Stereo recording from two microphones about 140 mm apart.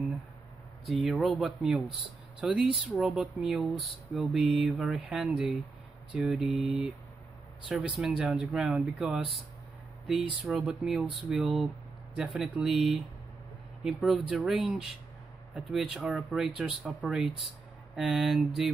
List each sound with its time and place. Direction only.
0.8 s speech: centre (ahead or behind)